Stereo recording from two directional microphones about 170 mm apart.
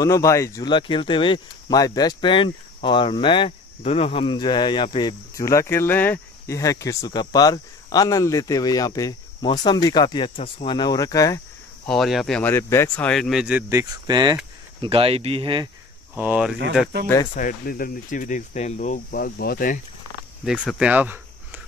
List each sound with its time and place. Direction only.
0.0 s speech: 15° left (ahead or behind)
11.9 s speech: centre (ahead or behind); by 15.7 s 30° right (ahead or behind)
16.2 s speech: 5° right (ahead or behind)
17.4 s speech: 55° left (ahead or behind)
20.7 s a sound: 5° right (ahead or behind)